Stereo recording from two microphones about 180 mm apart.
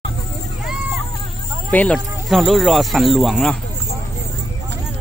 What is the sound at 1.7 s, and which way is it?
Speech, 5° left (ahead or behind).